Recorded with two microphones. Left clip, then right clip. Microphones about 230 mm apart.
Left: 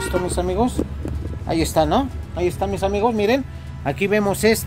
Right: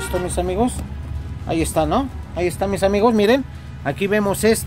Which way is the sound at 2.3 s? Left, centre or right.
Centre.